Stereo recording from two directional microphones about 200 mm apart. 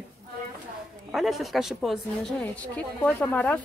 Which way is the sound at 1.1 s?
Centre (ahead or behind).